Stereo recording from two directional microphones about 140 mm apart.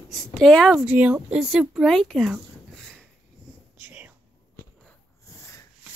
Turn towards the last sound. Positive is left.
turn(degrees=20)  # may be behind; listen again after turning